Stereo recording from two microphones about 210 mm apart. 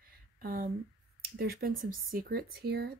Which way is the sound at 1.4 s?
45° right (ahead or behind).